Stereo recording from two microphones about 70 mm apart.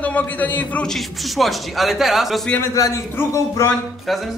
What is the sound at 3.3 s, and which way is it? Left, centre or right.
Speech, left.